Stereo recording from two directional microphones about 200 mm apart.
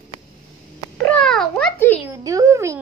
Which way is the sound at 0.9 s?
5° left (ahead or behind).